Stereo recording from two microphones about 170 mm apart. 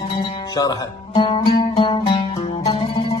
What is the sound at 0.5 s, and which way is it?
Speech, 25° left (ahead or behind).